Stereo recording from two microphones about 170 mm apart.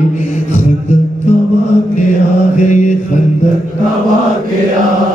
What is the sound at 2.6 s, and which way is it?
Mantra, 45° left (ahead or behind).